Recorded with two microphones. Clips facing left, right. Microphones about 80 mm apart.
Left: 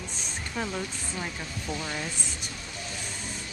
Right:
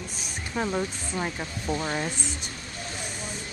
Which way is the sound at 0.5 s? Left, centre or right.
Centre.